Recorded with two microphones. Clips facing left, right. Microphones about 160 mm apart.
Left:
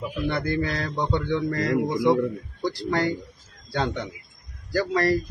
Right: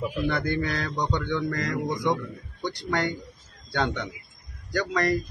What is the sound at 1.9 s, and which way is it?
Speech, 5° left (ahead or behind).